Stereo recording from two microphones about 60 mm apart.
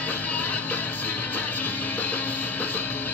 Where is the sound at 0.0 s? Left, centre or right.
Left.